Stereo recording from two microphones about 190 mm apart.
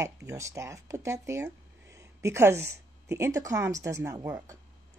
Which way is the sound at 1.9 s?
15° right (ahead or behind).